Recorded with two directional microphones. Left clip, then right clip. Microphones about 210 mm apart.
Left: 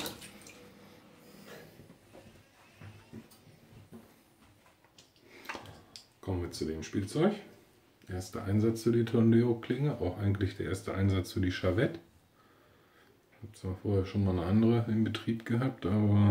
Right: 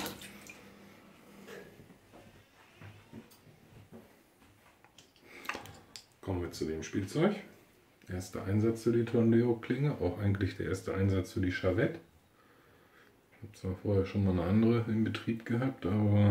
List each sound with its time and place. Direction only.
5.4 s a sound: 20° right (ahead or behind)
6.2 s speech: 10° left (ahead or behind)
8.5 s speech: 15° left (ahead or behind)
9.6 s speech: 5° right (ahead or behind); by 11.9 s 15° left (ahead or behind)
13.6 s speech: 5° right (ahead or behind)